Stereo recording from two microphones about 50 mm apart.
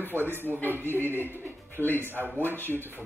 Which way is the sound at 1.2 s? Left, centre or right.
Left.